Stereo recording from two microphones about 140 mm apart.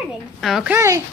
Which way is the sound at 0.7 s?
20° right (ahead or behind).